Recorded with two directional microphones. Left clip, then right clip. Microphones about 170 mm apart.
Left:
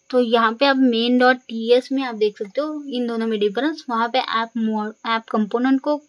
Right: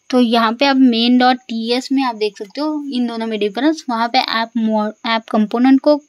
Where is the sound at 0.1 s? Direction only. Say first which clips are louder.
Right 3 dB; 40° right (ahead or behind).